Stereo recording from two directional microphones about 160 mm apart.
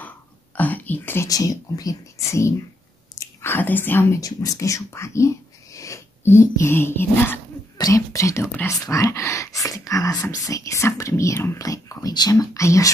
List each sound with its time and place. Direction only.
0.6 s speech: 10° left (ahead or behind)